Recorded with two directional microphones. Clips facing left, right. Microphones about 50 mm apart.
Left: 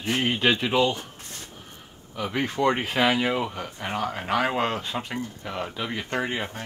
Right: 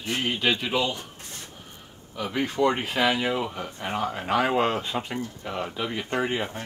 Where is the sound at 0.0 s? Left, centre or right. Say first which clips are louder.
Left 3 dB; centre.